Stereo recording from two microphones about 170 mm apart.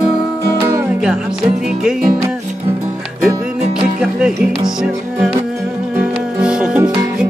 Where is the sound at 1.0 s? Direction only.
5° right (ahead or behind).